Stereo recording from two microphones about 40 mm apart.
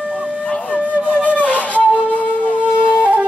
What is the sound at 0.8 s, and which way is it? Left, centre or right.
Flute, right.